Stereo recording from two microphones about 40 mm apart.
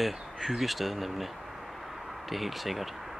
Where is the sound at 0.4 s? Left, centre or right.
Centre.